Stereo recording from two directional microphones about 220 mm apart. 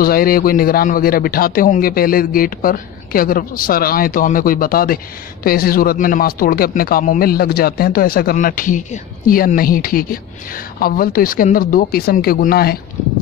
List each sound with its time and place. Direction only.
0.0 s a man's voice: 40° left (ahead or behind)